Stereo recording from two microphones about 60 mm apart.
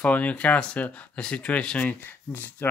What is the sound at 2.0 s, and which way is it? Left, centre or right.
Speech, left.